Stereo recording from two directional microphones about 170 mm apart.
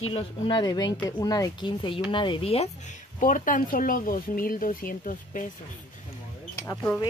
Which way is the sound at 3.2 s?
50° left (ahead or behind).